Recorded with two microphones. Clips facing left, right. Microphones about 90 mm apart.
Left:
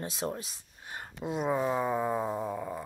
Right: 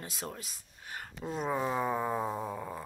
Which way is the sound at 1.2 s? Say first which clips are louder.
Left 3 dB; 10° left (ahead or behind).